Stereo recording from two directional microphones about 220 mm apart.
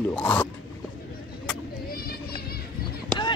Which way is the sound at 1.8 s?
40° left (ahead or behind).